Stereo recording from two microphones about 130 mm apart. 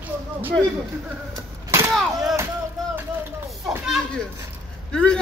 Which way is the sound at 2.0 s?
Centre (ahead or behind).